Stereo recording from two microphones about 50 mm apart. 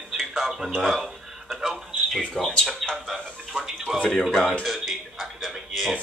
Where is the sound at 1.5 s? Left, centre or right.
Centre.